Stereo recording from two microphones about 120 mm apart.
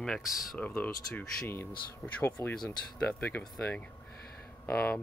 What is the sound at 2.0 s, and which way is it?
Speech, 5° left (ahead or behind).